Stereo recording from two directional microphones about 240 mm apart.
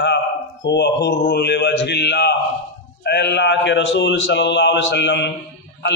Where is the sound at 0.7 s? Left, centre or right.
Left.